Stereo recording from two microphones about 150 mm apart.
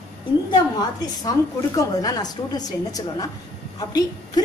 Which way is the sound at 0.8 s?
25° left (ahead or behind).